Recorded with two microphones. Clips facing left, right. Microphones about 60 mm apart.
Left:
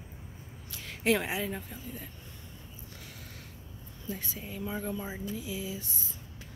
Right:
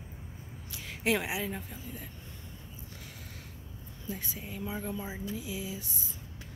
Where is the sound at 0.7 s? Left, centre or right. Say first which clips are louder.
Left 2 dB; centre.